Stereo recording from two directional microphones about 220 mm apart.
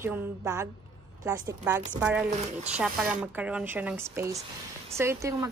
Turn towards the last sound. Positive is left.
turn(degrees=-15)  # may be behind; listen again after turning